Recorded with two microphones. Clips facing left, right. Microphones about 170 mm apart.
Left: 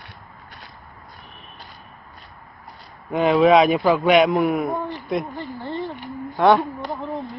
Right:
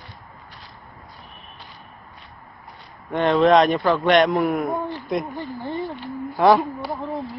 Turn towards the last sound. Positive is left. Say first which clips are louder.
# even
turn(degrees=0)  # may be behind; listen again after turning